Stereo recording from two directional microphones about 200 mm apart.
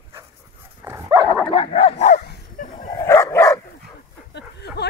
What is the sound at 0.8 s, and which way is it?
Dog, 15° right (ahead or behind).